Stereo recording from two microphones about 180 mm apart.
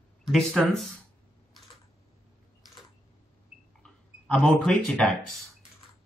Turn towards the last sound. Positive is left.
turn(degrees=5)  # may be behind; listen again after turning